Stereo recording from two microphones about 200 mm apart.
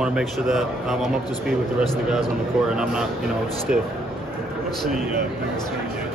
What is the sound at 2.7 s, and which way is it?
Speech, 5° right (ahead or behind).